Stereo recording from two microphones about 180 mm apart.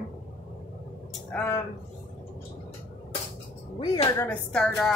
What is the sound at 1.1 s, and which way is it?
Speech, 5° left (ahead or behind).